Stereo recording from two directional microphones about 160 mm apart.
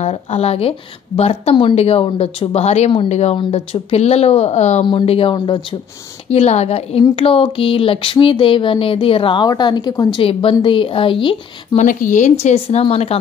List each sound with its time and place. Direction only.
0.0 s a woman's voice: 40° left (ahead or behind)
6.3 s a woman's voice: 40° left (ahead or behind)
11.8 s a woman's voice: 55° left (ahead or behind); by 13.2 s 40° left (ahead or behind)